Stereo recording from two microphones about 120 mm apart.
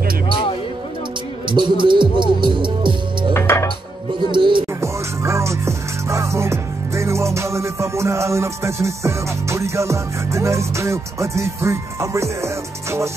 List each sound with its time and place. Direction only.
1.5 s speech: 40° right (ahead or behind)
3.3 s music: 20° left (ahead or behind)
4.3 s music: 40° right (ahead or behind)
4.7 s music: 25° right (ahead or behind)